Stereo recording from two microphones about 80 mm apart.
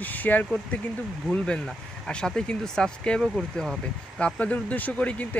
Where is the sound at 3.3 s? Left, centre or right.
Centre.